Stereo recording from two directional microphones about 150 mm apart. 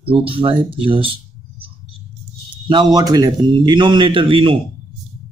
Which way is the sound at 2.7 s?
30° right (ahead or behind).